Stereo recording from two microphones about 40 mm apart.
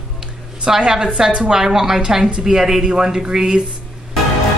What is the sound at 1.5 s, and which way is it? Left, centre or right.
A woman's voice, centre.